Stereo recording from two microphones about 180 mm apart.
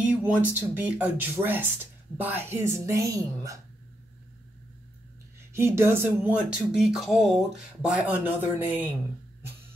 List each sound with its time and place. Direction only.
0.0 s speech: 5° right (ahead or behind)
5.5 s speech: 15° right (ahead or behind)
6.8 s speech: 5° right (ahead or behind)